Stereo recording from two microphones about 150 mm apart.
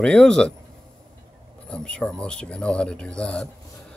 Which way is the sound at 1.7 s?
5° left (ahead or behind).